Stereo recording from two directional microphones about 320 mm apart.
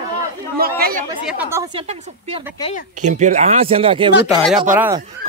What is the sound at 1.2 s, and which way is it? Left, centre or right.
A woman's voice, centre.